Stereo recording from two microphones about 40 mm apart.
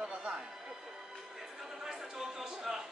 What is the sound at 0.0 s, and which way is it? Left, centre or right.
Music, right.